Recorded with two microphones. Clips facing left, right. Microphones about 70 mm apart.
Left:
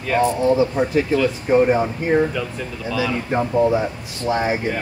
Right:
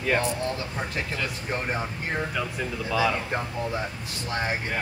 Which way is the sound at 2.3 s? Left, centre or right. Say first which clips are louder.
Left 3 dB; centre.